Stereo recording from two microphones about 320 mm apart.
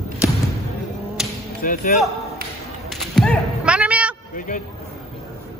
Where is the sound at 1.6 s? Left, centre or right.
Left.